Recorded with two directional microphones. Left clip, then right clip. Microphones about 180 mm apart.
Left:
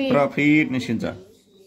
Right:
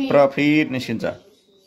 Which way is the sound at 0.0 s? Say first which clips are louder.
Right 3 dB; 15° right (ahead or behind).